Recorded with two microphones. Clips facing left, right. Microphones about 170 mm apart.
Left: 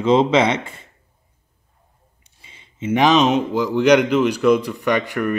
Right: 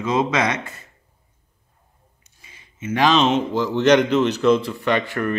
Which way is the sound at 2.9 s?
15° left (ahead or behind).